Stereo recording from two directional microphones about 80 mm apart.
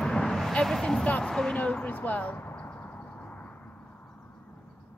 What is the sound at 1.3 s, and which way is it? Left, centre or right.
Speech, centre.